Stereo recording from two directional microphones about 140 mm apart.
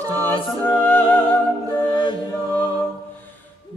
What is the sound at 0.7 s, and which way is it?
Music, 10° left (ahead or behind).